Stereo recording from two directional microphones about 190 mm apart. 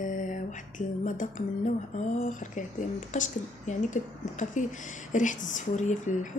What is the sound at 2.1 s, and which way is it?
Speech, 40° left (ahead or behind).